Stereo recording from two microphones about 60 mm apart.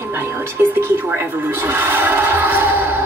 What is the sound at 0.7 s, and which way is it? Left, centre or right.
Television, right.